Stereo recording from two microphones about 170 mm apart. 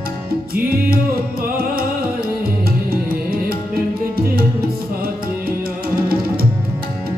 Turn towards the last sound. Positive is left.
turn(degrees=-60)  # may be behind; listen again after turning